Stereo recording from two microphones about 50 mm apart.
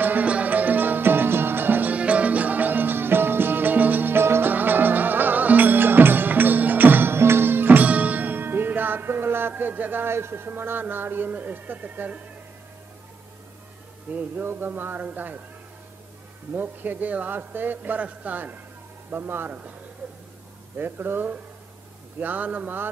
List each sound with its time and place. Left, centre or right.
0.0 s music: right
10.1 s speech: right
11.2 s a man's voice: right
14.3 s a man's voice: right
16.5 s a man's voice: right
20.7 s a man's voice: right